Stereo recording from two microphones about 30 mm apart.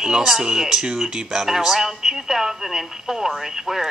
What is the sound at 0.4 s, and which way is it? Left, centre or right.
A woman's voice, centre.